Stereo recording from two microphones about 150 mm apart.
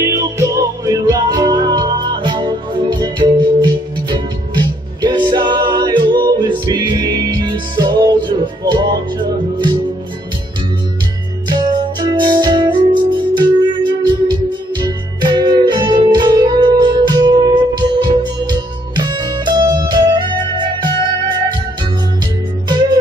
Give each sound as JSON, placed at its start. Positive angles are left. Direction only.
{"t": 0.0, "sound": "music", "side_deg": -20}
{"t": 11.4, "sound": "music", "side_deg": -30}
{"t": 22.7, "sound": "music", "side_deg": -30}